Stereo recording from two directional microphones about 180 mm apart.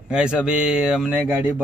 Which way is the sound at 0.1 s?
5° right (ahead or behind).